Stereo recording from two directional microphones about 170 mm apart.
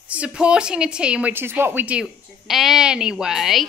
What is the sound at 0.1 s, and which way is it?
Speech, 5° right (ahead or behind).